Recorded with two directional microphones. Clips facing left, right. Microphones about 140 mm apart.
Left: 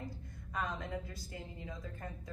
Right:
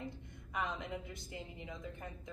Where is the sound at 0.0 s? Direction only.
20° right (ahead or behind).